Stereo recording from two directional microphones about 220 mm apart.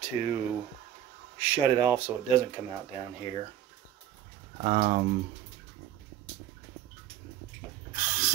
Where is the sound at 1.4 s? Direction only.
10° right (ahead or behind).